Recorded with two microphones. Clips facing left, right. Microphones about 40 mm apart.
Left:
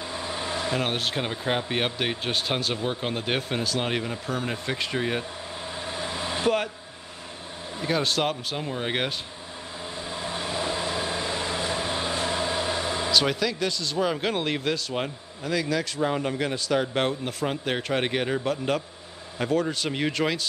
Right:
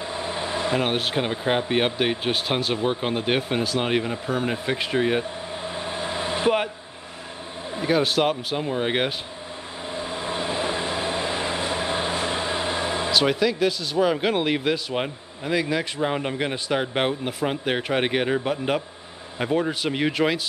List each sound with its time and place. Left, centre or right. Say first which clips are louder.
0.2 s speech: right 3 dB; right
5.9 s vehicle: right 3 dB; right
7.7 s speech: right 4 dB; centre
9.9 s train: right 4 dB; right
12.8 s a sound: right 3 dB; right
13.1 s speech: right 3 dB; centre